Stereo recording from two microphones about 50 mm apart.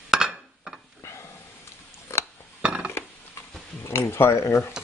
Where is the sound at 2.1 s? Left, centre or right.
Left.